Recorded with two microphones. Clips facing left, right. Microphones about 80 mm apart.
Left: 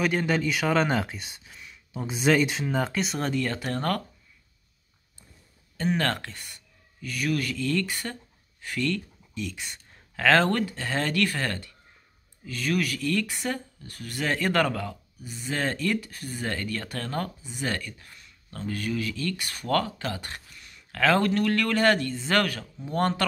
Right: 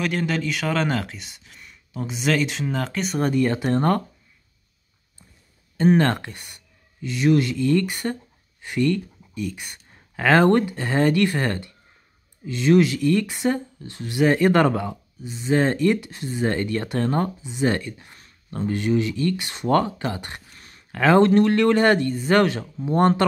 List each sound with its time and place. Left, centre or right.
0.0 s speech: centre
1.6 s a sound: centre
2.0 s speech: centre
2.7 s speech: centre
3.2 s speech: centre
5.9 s speech: centre
20.5 s a sound: right
20.9 s speech: right